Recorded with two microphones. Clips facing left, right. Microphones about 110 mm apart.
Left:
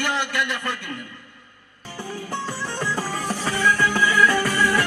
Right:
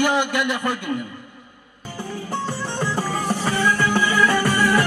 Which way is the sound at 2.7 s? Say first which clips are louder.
Right 3 dB; 15° right (ahead or behind).